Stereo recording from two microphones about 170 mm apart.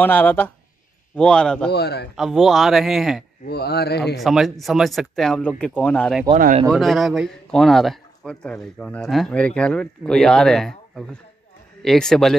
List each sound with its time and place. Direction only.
0.0 s speech: 10° left (ahead or behind)
1.7 s speech: 75° left (ahead or behind)
2.1 s speech: centre (ahead or behind)
3.4 s speech: 70° left (ahead or behind)
4.2 s speech: centre (ahead or behind)
6.3 s speech: 45° right (ahead or behind)
6.7 s speech: centre (ahead or behind)